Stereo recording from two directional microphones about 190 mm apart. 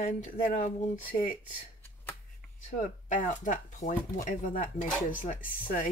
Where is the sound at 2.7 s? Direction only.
40° left (ahead or behind).